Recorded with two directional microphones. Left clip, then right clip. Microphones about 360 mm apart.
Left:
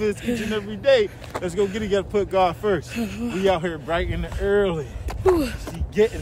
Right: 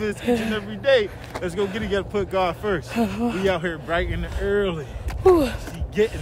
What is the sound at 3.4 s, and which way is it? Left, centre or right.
Speech, centre.